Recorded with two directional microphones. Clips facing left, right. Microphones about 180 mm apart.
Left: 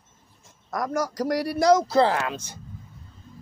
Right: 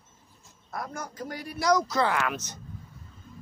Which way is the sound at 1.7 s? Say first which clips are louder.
Left 5 dB; 30° left (ahead or behind).